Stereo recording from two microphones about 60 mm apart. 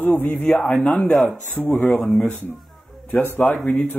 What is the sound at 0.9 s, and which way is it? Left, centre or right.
Speech, left.